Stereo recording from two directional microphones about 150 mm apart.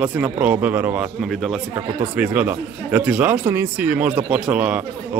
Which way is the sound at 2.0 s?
10° right (ahead or behind).